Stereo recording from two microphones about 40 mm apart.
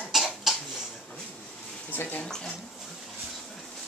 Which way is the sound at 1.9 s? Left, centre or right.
Left.